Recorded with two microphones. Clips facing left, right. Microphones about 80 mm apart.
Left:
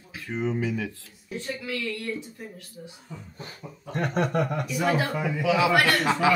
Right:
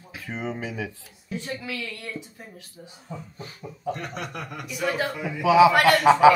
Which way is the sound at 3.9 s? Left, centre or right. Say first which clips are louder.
Left 5 dB; left.